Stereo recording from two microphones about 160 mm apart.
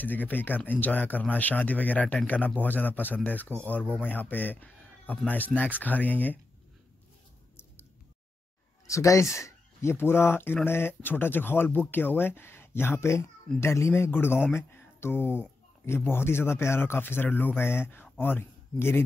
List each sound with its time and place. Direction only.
0.0 s speech: 10° left (ahead or behind)
8.8 s speech: 20° left (ahead or behind)